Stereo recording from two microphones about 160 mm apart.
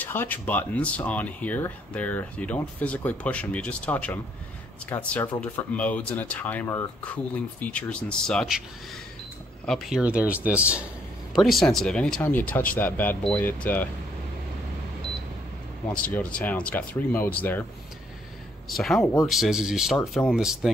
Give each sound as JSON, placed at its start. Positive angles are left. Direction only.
{"t": 0.0, "sound": "speech", "side_deg": 10}
{"t": 9.7, "sound": "speech", "side_deg": -5}
{"t": 16.1, "sound": "speech", "side_deg": 5}
{"t": 18.8, "sound": "speech", "side_deg": 5}